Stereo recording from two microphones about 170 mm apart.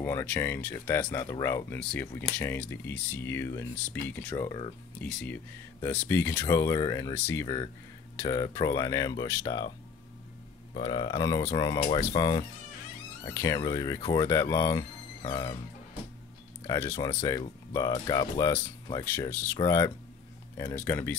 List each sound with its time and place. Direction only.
0.0 s speech: 10° left (ahead or behind)
10.7 s speech: 30° left (ahead or behind)
16.6 s speech: 20° left (ahead or behind)
19.0 s speech: 15° left (ahead or behind)